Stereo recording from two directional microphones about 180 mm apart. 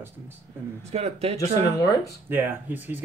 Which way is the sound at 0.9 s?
35° right (ahead or behind).